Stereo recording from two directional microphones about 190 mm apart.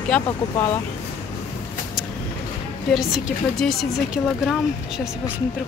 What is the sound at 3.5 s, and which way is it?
Speech, centre (ahead or behind).